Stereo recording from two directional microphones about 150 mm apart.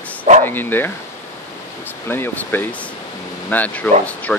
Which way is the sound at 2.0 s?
15° left (ahead or behind).